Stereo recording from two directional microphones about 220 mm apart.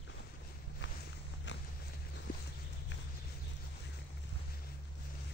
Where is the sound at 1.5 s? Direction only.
55° left (ahead or behind).